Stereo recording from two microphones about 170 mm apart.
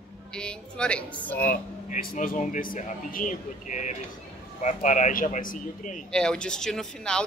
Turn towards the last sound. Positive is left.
turn(degrees=5)  # may be behind; listen again after turning